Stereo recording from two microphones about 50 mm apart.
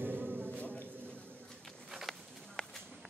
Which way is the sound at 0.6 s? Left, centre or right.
Left.